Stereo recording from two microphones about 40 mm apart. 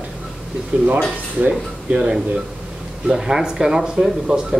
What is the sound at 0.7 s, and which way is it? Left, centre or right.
Speech, right.